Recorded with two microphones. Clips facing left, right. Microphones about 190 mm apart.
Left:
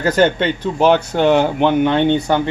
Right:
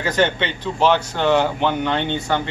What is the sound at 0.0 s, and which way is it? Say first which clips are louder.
Speech: left 5 dB; 45° left (ahead or behind).